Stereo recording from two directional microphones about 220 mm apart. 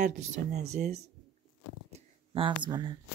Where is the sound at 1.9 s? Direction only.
25° right (ahead or behind).